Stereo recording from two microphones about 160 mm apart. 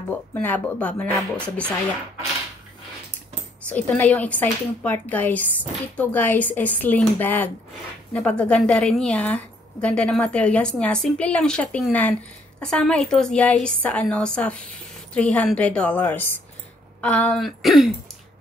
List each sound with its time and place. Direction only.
0.1 s a woman's voice: 10° left (ahead or behind)
3.6 s a woman's voice: 10° left (ahead or behind)